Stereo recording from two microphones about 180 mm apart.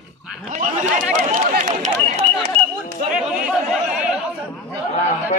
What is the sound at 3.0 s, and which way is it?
Chatter, 5° right (ahead or behind).